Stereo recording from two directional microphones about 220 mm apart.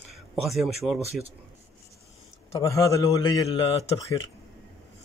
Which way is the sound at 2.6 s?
15° left (ahead or behind).